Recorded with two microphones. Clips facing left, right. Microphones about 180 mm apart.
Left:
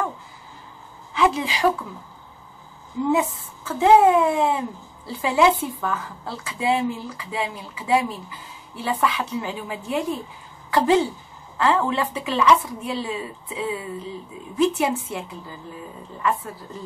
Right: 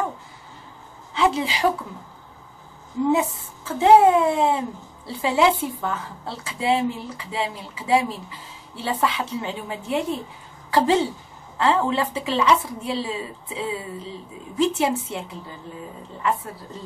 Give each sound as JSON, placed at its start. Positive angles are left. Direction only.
{"t": 1.1, "sound": "a woman's voice", "side_deg": -25}
{"t": 3.1, "sound": "a woman's voice", "side_deg": -25}